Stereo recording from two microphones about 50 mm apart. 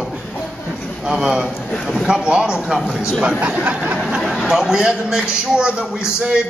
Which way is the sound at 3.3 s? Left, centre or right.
Right.